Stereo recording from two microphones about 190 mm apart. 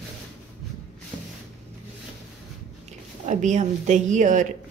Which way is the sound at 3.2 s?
40° right (ahead or behind).